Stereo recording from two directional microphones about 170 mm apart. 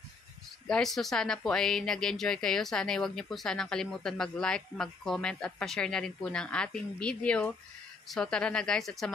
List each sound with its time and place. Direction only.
0.7 s speech: 5° left (ahead or behind)